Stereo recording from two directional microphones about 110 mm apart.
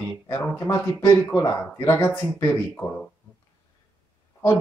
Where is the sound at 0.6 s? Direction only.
25° left (ahead or behind).